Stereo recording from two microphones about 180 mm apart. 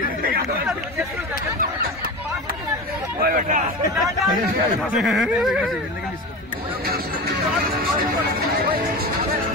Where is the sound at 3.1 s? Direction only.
50° right (ahead or behind).